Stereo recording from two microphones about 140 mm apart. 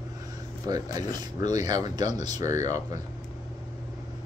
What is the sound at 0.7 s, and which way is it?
Speech, 30° right (ahead or behind).